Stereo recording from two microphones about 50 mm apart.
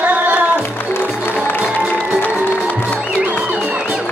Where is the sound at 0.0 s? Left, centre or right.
Right.